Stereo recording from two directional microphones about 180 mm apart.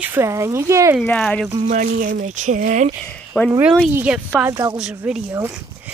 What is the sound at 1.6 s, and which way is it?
Speech, 45° right (ahead or behind).